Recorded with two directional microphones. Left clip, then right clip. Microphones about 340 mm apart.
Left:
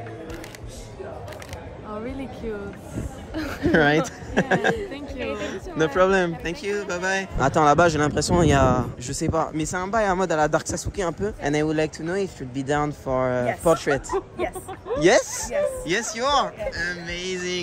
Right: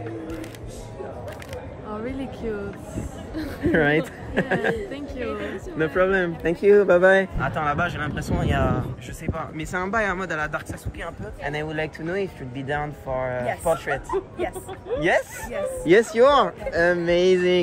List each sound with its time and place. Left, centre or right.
2.0 s speech: centre
3.3 s speech: centre
6.7 s speech: centre
7.3 s speech: centre
15.0 s speech: centre
15.8 s speech: centre